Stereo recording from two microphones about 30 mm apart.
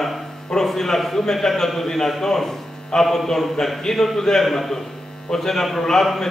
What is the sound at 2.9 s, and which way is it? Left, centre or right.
A man's voice, left.